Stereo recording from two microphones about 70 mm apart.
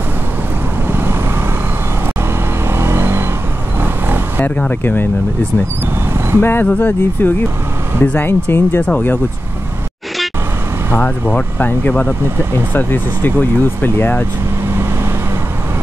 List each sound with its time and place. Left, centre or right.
0.8 s vehicle: right
2.8 s vehicle: right
4.4 s speech: left
6.4 s speech: left
11.0 s speech: left